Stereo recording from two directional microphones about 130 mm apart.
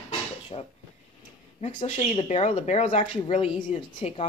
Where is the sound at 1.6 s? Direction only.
45° left (ahead or behind).